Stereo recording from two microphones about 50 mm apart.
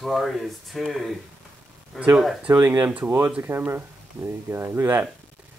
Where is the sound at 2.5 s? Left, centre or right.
Right.